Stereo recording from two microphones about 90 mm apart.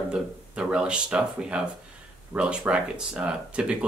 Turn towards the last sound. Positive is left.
turn(degrees=-10)  # may be behind; listen again after turning